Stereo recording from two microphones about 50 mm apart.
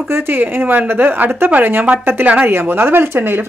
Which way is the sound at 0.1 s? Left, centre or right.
Right.